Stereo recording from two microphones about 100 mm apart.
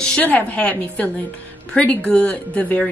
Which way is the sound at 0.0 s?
10° left (ahead or behind).